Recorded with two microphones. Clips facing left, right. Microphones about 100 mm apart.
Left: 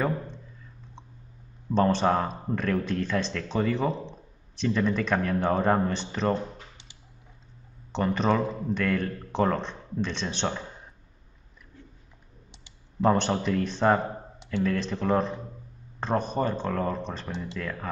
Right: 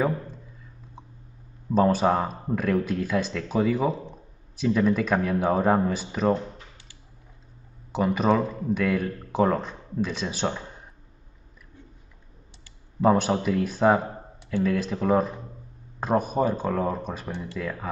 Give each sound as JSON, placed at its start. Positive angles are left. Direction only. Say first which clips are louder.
{"t": 1.7, "sound": "speech", "louder": "right 2 dB", "side_deg": -5}
{"t": 7.9, "sound": "speech", "louder": "right 3 dB", "side_deg": -5}
{"t": 13.0, "sound": "speech", "louder": "right 2 dB", "side_deg": -5}